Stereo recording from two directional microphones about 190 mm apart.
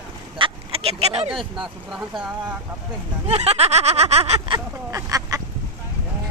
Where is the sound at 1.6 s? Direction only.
Centre (ahead or behind).